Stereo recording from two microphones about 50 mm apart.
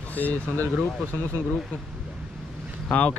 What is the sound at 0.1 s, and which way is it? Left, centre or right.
Speech, left.